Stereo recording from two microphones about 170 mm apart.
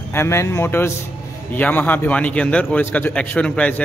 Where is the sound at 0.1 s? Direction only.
15° left (ahead or behind).